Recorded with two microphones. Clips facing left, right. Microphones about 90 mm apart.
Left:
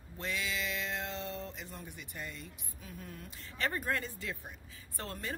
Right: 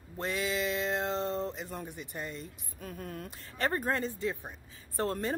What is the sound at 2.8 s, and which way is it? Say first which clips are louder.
Speech: right 7 dB; 55° right (ahead or behind).